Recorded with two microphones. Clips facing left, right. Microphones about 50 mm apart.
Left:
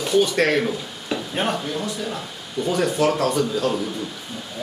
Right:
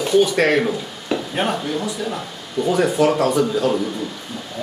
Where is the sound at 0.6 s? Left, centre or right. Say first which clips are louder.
Right 3 dB; centre.